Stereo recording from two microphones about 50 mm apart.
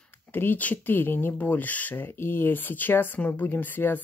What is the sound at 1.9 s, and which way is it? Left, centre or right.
Speech, left.